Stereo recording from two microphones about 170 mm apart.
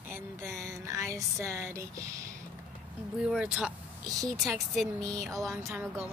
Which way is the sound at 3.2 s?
5° right (ahead or behind).